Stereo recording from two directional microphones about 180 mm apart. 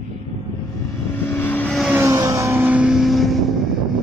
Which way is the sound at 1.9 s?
15° right (ahead or behind).